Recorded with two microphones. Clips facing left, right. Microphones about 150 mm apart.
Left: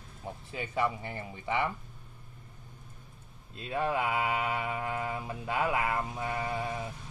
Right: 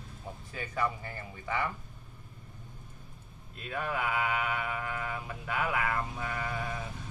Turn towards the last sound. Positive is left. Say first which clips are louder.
# left 3 dB
turn(degrees=25)  # may be behind; listen again after turning